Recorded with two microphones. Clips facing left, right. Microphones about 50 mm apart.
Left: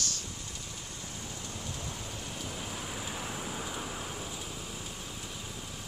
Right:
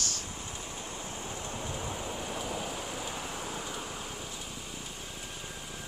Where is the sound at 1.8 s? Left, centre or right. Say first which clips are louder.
Right 5 dB; centre.